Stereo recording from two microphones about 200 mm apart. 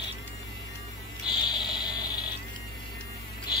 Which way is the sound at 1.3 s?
20° left (ahead or behind).